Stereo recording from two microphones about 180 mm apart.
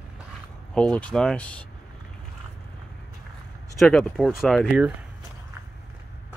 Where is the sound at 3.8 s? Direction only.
Centre (ahead or behind).